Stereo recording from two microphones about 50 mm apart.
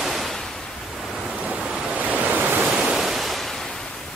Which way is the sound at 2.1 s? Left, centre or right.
Right.